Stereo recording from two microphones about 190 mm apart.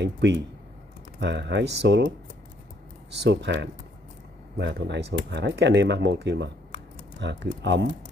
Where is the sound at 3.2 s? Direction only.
65° right (ahead or behind).